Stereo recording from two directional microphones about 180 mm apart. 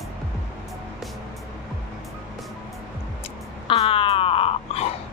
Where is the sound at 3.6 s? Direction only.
30° left (ahead or behind).